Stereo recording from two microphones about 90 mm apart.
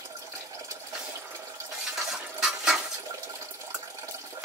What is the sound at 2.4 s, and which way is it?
Water, 5° right (ahead or behind).